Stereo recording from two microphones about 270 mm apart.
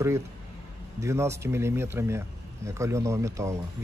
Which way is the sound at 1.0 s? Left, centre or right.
Centre.